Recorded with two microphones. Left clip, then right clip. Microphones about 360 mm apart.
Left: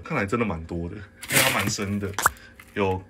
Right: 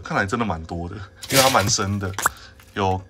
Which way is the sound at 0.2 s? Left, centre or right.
Centre.